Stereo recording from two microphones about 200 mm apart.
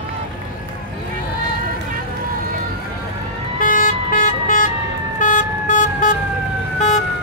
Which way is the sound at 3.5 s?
45° left (ahead or behind).